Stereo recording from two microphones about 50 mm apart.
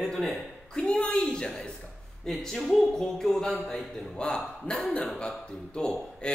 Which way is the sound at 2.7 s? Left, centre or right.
Centre.